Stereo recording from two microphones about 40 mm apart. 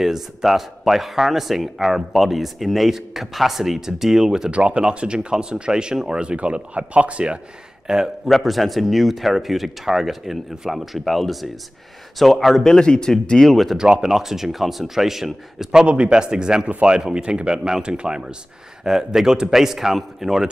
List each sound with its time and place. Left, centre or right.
0.0 s speech: centre
4.5 s speech: right
7.8 s a man's voice: centre
8.3 s speech: centre
12.6 s speech: centre
13.7 s speech: centre
15.8 s speech: right; by 20.4 s centre